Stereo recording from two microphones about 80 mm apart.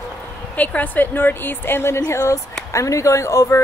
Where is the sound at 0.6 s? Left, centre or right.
Left.